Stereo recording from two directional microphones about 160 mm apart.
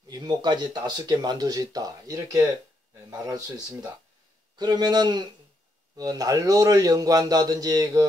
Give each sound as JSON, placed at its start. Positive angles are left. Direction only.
{"t": 0.1, "sound": "speech", "side_deg": -25}